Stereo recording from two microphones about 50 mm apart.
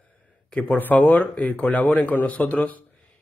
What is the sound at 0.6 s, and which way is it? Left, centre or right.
Speech, left.